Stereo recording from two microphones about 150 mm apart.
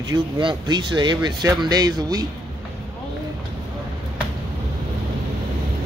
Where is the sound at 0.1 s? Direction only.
30° right (ahead or behind).